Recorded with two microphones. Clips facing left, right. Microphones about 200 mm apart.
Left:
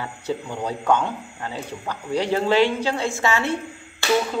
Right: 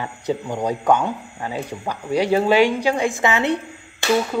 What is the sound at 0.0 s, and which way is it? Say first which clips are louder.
A man's voice: right 3 dB; 15° right (ahead or behind).